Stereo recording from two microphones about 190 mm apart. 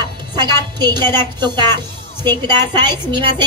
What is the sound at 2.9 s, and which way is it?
Speech, 25° right (ahead or behind).